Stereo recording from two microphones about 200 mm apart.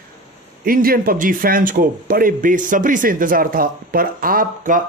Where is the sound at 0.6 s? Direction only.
45° right (ahead or behind).